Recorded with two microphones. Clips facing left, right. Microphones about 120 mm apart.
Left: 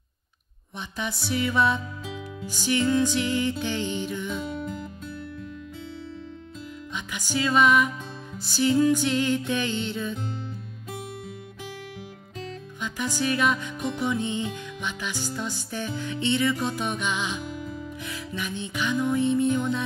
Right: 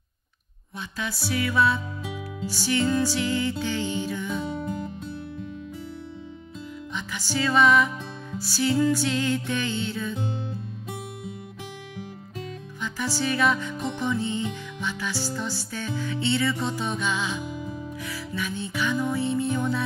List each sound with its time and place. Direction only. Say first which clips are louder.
0.7 s music: even; 20° left (ahead or behind)
2.8 s music: left 1 dB; 10° right (ahead or behind)
3.2 s music: even; 15° left (ahead or behind)
4.3 s music: right 2 dB; 25° right (ahead or behind)
7.1 s music: even; 15° left (ahead or behind)
12.8 s music: even; 15° left (ahead or behind)